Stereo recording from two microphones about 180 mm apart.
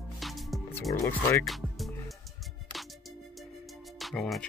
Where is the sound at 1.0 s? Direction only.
15° left (ahead or behind).